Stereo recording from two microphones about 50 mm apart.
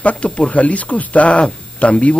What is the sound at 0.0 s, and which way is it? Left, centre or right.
Speech, left.